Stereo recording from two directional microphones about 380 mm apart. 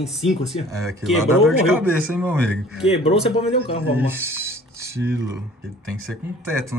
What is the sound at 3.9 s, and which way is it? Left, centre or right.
Speech, centre.